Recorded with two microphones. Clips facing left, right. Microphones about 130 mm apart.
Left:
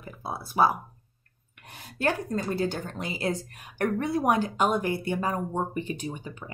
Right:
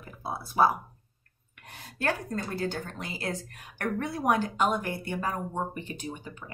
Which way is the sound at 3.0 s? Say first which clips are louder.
Left 5 dB; 15° left (ahead or behind).